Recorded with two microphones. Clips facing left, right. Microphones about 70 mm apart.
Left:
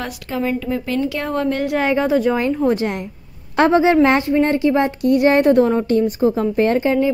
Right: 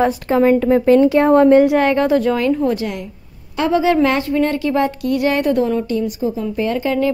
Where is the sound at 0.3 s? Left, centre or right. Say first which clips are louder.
Right 7 dB; right.